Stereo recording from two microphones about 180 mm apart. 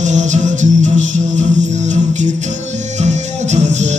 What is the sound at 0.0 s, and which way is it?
Music, 45° right (ahead or behind).